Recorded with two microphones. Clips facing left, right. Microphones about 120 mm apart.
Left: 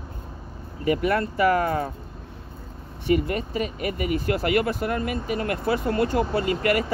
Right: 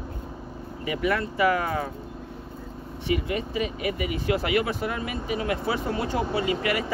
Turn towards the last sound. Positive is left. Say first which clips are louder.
# left 3 dB
turn(degrees=50)  # may be behind; listen again after turning